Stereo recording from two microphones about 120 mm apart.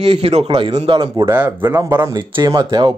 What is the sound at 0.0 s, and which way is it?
Speech, 55° right (ahead or behind).